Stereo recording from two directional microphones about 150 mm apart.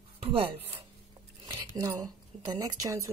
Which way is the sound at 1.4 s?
25° right (ahead or behind).